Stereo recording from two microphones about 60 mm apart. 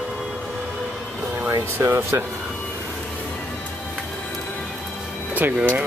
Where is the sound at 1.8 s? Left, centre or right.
Right.